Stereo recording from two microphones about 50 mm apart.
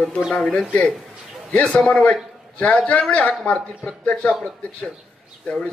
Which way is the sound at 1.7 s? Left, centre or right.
Left.